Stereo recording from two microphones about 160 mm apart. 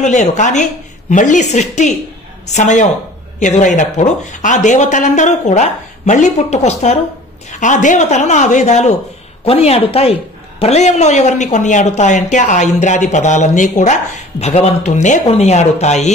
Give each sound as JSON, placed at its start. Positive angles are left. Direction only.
{"t": 0.0, "sound": "speech", "side_deg": 45}